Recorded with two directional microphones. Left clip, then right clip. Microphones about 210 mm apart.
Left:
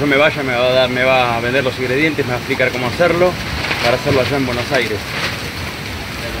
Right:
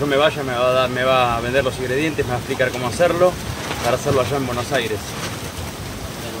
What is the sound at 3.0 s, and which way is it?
Speech, 15° left (ahead or behind).